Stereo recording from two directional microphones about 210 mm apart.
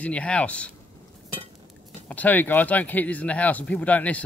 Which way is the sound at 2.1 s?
5° left (ahead or behind).